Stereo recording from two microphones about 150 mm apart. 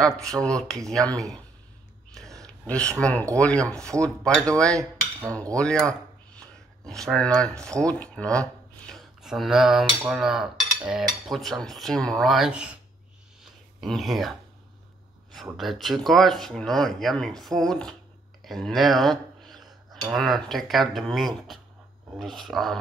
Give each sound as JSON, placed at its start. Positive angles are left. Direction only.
{"t": 0.0, "sound": "cutlery", "side_deg": 5}
{"t": 2.4, "sound": "speech", "side_deg": 5}
{"t": 4.0, "sound": "cutlery", "side_deg": 5}
{"t": 4.6, "sound": "dishes", "side_deg": -20}
{"t": 5.6, "sound": "a sound", "side_deg": 5}
{"t": 6.9, "sound": "cutlery", "side_deg": 5}
{"t": 7.9, "sound": "speech", "side_deg": 10}
{"t": 10.0, "sound": "cutlery", "side_deg": 0}
{"t": 13.4, "sound": "a sound", "side_deg": 0}
{"t": 15.4, "sound": "cutlery", "side_deg": 0}
{"t": 18.4, "sound": "speech", "side_deg": 0}
{"t": 19.9, "sound": "cutlery", "side_deg": 0}